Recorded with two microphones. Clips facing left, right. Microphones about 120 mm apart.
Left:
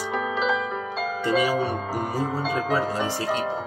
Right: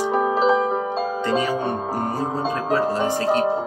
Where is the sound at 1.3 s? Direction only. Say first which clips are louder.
Left 1 dB; 10° left (ahead or behind).